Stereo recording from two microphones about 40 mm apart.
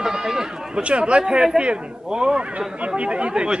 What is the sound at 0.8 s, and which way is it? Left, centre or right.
Speech, right.